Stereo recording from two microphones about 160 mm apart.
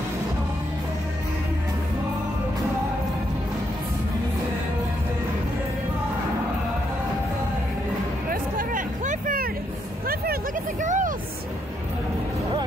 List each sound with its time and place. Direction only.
8.3 s hubbub: 60° right (ahead or behind)
10.0 s vehicle: 70° right (ahead or behind)
10.9 s a sound: 50° right (ahead or behind)